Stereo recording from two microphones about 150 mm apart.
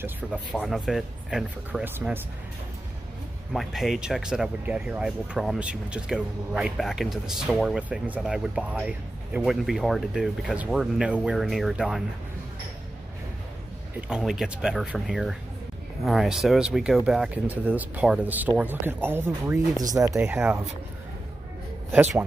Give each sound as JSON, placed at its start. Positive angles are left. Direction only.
{"t": 0.0, "sound": "speech", "side_deg": -5}
{"t": 3.5, "sound": "speech", "side_deg": 0}
{"t": 14.0, "sound": "speech", "side_deg": -5}
{"t": 21.9, "sound": "speech", "side_deg": -15}